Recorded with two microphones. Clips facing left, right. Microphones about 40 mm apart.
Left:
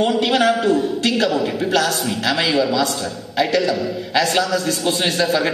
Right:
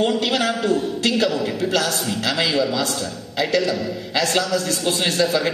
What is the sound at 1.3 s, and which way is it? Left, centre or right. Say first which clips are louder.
A man's voice: left 3 dB; left.